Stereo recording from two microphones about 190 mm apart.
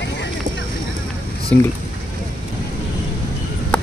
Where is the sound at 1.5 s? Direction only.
10° left (ahead or behind).